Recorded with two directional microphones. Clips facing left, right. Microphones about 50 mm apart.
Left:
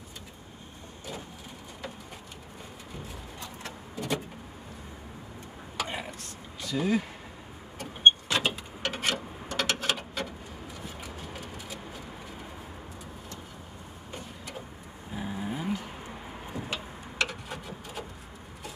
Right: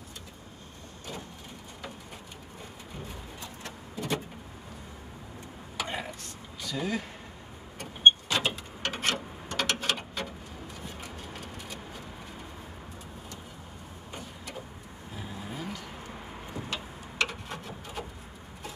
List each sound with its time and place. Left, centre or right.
3.9 s vehicle: centre
5.9 s a sound: centre
6.6 s speech: centre
7.8 s vehicle: centre
15.1 s vehicle: centre
16.1 s vehicle: centre
17.2 s a sound: centre